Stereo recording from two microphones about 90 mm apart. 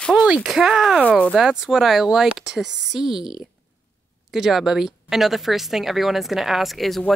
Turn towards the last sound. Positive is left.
turn(degrees=0)  # may be behind; listen again after turning